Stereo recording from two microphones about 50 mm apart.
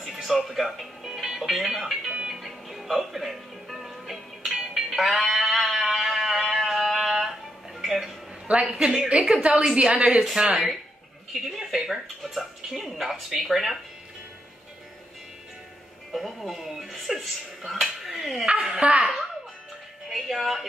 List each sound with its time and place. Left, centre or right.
0.0 s music: centre
2.4 s music: centre
4.6 s music: centre
4.9 s music: centre
5.7 s a sound: centre
8.5 s a man's voice: right
11.4 s speech: centre
16.1 s speech: centre
18.6 s a man's voice: centre
18.9 s a woman's voice: right
20.1 s speech: centre